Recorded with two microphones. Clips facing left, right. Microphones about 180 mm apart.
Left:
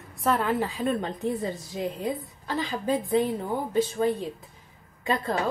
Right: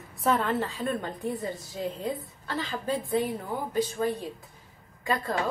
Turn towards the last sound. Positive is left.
turn(degrees=25)  # may be behind; listen again after turning